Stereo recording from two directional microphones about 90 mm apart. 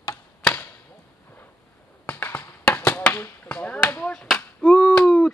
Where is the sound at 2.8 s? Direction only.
20° left (ahead or behind).